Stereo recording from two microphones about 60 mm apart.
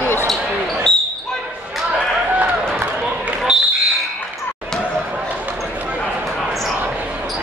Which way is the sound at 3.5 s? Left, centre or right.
Centre.